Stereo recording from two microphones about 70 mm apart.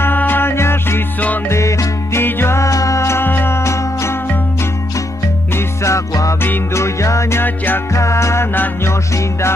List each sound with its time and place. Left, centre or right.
0.0 s music: left
1.5 s music: left
2.2 s music: left
3.3 s music: left
5.9 s music: left
7.4 s music: left
7.9 s music: left